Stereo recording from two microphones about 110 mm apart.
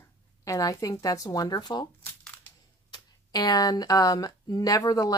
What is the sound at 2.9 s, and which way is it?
Speech, 40° left (ahead or behind).